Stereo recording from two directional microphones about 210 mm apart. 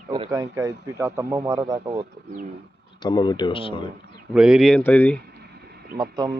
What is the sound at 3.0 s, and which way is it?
Speech, 20° left (ahead or behind).